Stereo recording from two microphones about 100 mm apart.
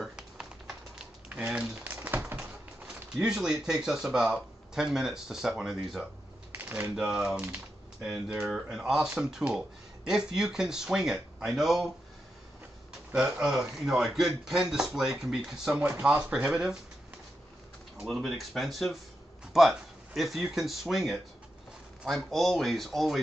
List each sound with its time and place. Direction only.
0.0 s a sound: 5° right (ahead or behind)
2.0 s a sound: 20° right (ahead or behind)
3.2 s speech: 5° right (ahead or behind)
6.5 s typewriter: 20° right (ahead or behind)
7.0 s speech: 5° right (ahead or behind)
13.1 s speech: 10° right (ahead or behind)
17.9 s speech: centre (ahead or behind)